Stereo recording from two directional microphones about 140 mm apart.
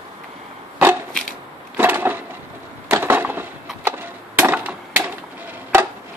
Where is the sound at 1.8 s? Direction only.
15° right (ahead or behind).